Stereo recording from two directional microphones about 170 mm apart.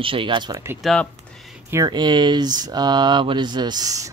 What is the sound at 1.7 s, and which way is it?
Speech, 20° right (ahead or behind).